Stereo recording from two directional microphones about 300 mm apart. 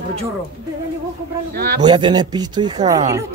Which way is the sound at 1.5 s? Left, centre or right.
Right.